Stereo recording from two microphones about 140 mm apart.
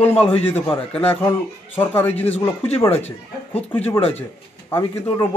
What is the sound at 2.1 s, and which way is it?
Speech, 45° left (ahead or behind).